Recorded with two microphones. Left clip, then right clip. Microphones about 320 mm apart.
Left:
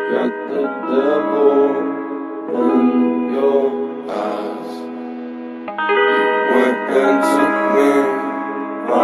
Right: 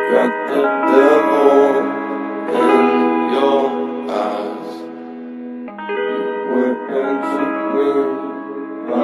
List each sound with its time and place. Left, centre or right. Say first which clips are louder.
0.0 s speech: right 4 dB; right
0.9 s music: right 4 dB; right; by 3.7 s centre
4.1 s music: right 2 dB; centre
5.8 s music: left 7 dB; left